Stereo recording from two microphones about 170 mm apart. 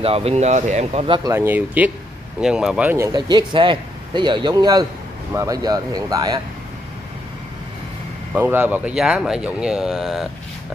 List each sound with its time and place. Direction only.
0.0 s speech: 35° right (ahead or behind)
1.3 s speech: 10° right (ahead or behind)
3.1 s speech: 25° right (ahead or behind)
8.4 s speech: 10° right (ahead or behind)